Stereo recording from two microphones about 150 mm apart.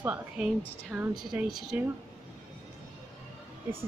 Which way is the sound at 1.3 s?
Centre (ahead or behind).